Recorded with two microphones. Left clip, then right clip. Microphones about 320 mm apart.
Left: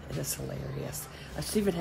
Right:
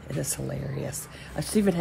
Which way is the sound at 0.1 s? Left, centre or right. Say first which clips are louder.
Right 5 dB; centre.